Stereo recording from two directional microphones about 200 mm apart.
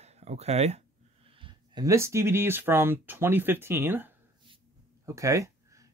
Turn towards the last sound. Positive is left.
turn(degrees=-15)  # may be behind; listen again after turning